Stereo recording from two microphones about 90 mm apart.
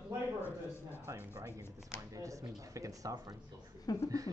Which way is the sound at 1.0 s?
25° right (ahead or behind).